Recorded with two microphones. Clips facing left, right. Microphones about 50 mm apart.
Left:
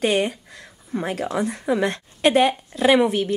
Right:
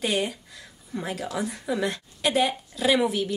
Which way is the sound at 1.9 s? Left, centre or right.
Left.